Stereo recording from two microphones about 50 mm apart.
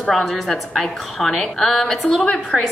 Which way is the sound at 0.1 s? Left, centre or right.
Centre.